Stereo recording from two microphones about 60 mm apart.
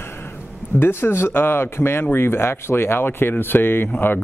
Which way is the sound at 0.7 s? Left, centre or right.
Left.